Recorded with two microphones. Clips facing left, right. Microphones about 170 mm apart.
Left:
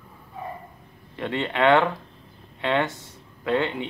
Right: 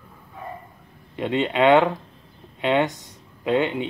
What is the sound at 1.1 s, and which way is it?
Speech, 20° right (ahead or behind).